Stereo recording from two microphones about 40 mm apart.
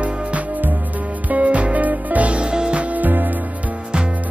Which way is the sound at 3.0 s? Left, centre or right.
Right.